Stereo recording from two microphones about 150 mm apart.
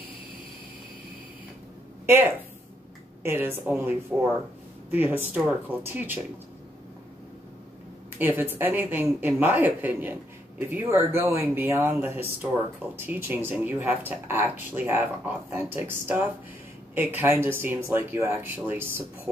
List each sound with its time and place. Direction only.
3.3 s speech: 15° right (ahead or behind)
8.2 s speech: 10° right (ahead or behind)